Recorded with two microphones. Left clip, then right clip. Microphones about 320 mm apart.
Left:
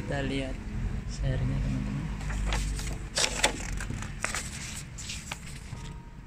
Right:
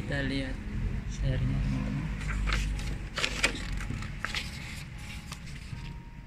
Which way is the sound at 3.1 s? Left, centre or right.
Left.